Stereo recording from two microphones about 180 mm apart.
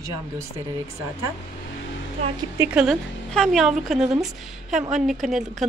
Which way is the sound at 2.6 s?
5° right (ahead or behind).